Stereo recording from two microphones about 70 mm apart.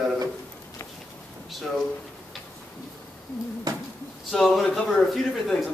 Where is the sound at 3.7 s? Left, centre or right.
Right.